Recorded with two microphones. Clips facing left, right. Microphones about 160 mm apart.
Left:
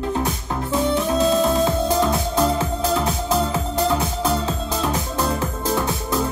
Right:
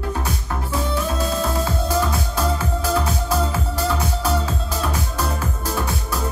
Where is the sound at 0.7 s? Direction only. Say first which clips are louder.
Left 5 dB; 20° left (ahead or behind).